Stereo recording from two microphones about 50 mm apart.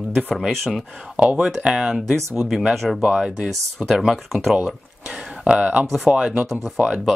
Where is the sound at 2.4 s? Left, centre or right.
Centre.